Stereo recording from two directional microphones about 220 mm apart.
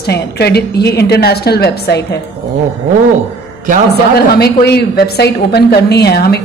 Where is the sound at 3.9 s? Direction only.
45° left (ahead or behind).